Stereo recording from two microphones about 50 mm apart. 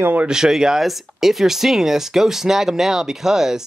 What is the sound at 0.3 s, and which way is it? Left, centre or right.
Speech, centre.